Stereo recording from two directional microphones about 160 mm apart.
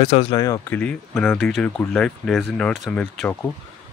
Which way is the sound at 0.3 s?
25° left (ahead or behind).